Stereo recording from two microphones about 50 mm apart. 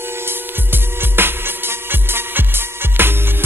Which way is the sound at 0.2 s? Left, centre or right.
Right.